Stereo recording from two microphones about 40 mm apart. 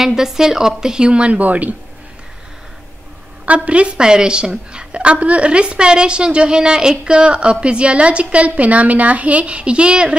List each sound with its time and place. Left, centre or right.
0.0 s speech: centre; by 1.8 s right
3.4 s a woman's voice: right